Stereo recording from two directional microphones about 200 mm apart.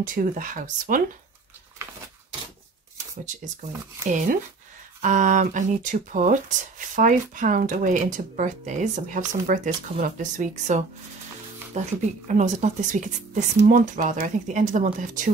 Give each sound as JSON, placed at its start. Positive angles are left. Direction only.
{"t": 0.0, "sound": "speech", "side_deg": -40}
{"t": 5.0, "sound": "speech", "side_deg": -40}